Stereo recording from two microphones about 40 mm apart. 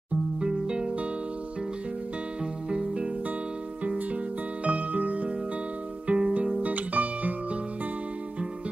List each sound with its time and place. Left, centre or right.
0.4 s music: centre
2.7 s music: right
4.6 s music: right
6.6 s music: right